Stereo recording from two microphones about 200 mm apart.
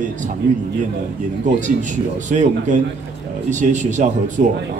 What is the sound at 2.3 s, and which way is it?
A man's voice, 35° right (ahead or behind).